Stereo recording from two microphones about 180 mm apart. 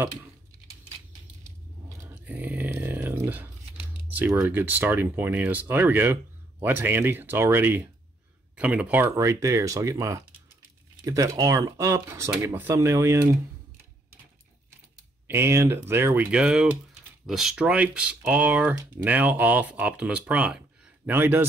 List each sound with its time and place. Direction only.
1.4 s a sound: 15° right (ahead or behind)
4.1 s speech: 10° right (ahead or behind)
15.2 s speech: 15° right (ahead or behind)